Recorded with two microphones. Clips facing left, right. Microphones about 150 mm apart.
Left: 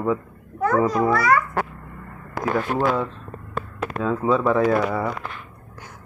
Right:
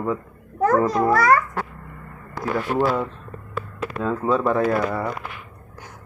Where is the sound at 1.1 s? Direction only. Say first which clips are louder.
Right 2 dB; 45° right (ahead or behind).